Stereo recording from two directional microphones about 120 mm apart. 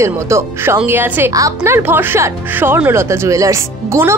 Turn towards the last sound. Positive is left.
turn(degrees=-25)  # may be behind; listen again after turning